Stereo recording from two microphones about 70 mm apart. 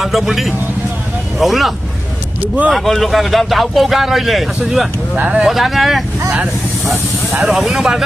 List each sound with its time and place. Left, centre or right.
0.0 s speech: centre
2.4 s speech: right
2.7 s speech: centre
5.1 s speech: centre
5.5 s speech: centre